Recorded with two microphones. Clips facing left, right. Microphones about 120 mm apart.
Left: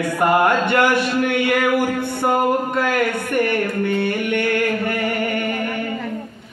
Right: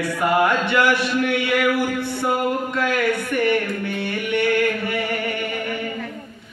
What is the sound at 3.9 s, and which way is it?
Music, 50° left (ahead or behind).